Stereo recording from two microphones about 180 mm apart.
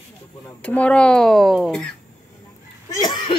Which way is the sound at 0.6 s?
5° left (ahead or behind).